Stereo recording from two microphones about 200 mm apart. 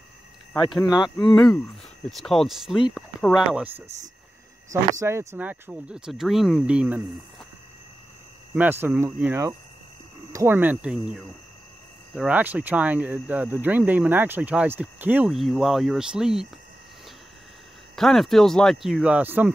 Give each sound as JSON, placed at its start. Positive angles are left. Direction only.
{"t": 0.8, "sound": "speech", "side_deg": 20}
{"t": 2.0, "sound": "speech", "side_deg": 0}
{"t": 8.5, "sound": "speech", "side_deg": -10}
{"t": 17.9, "sound": "speech", "side_deg": 0}